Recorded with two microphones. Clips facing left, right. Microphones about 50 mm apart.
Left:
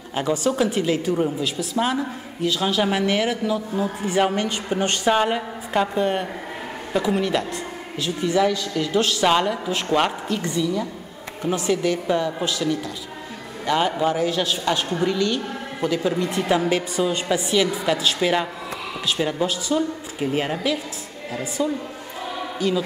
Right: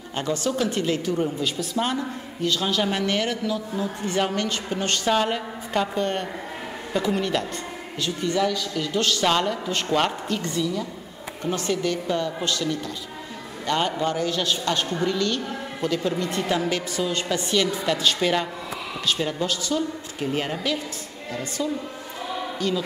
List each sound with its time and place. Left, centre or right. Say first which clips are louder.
0.1 s a woman's voice: left 3 dB; centre